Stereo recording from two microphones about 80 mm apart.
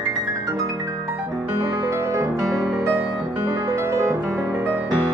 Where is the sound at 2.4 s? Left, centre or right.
Centre.